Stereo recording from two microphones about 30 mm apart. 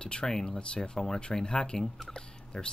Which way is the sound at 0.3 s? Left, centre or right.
Centre.